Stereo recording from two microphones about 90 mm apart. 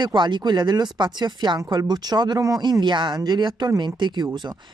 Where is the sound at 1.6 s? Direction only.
45° right (ahead or behind).